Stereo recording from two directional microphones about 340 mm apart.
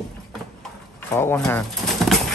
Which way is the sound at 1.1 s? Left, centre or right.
Centre.